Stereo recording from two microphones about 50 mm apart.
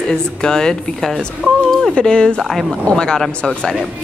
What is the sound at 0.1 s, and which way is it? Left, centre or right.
A woman's voice, centre.